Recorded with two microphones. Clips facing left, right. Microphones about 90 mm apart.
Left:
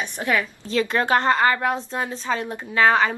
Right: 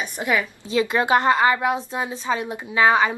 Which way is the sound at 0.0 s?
10° right (ahead or behind).